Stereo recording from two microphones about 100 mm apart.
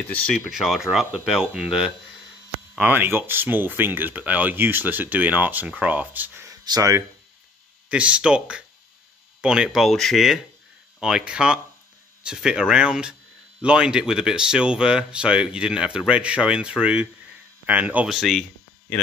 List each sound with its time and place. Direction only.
0.3 s speech: centre (ahead or behind)
2.8 s speech: 20° right (ahead or behind)
6.6 s speech: 35° right (ahead or behind)
7.9 s speech: 10° right (ahead or behind)
18.0 s speech: centre (ahead or behind)